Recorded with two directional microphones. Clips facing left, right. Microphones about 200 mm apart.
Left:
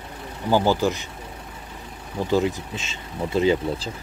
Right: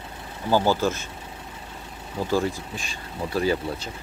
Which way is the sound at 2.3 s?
20° left (ahead or behind).